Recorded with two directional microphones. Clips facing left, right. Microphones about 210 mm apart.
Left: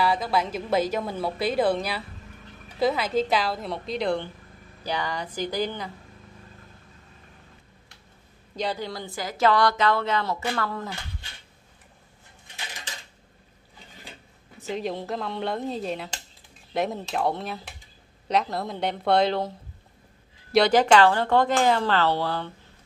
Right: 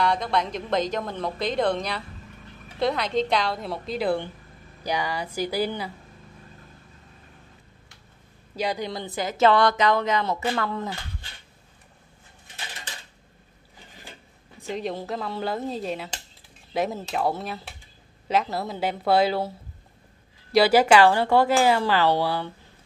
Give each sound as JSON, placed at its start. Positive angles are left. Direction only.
{"t": 0.0, "sound": "a woman's voice", "side_deg": 5}
{"t": 8.5, "sound": "speech", "side_deg": -15}
{"t": 14.7, "sound": "a woman's voice", "side_deg": 0}
{"t": 20.5, "sound": "a woman's voice", "side_deg": -5}